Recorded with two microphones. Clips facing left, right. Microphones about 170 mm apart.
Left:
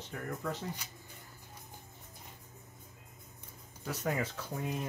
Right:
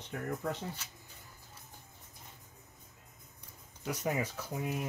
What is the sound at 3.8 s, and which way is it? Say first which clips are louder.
Speech: right 1 dB; 15° right (ahead or behind).